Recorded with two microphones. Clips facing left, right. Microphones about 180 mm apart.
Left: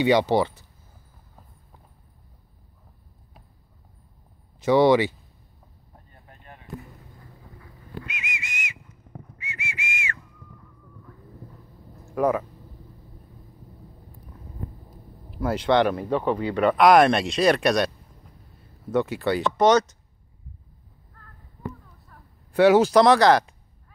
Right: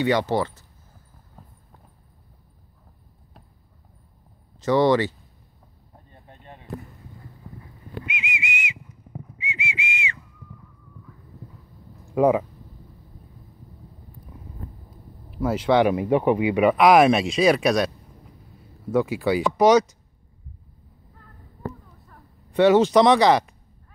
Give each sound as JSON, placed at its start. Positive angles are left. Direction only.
{"t": 0.0, "sound": "speech", "side_deg": 15}
{"t": 4.6, "sound": "speech", "side_deg": 10}
{"t": 6.1, "sound": "a sound", "side_deg": -25}
{"t": 8.0, "sound": "whistle", "side_deg": -15}
{"t": 12.1, "sound": "speech", "side_deg": -15}
{"t": 15.3, "sound": "speech", "side_deg": 0}
{"t": 22.1, "sound": "speech", "side_deg": 5}